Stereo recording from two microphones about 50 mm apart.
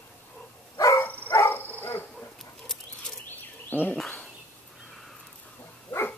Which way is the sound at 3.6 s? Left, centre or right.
Left.